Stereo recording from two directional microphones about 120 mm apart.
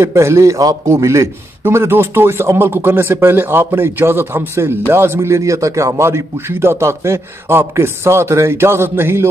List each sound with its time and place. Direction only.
0.0 s a man's voice: 25° right (ahead or behind)